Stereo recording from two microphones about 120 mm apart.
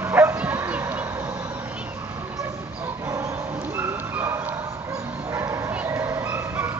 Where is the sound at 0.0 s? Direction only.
20° right (ahead or behind).